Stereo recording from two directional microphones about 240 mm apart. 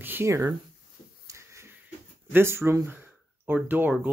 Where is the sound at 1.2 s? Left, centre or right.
Centre.